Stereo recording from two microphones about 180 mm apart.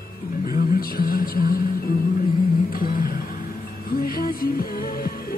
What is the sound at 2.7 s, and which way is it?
Music, 55° left (ahead or behind).